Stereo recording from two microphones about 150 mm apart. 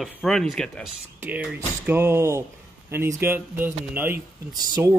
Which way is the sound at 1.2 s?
10° right (ahead or behind).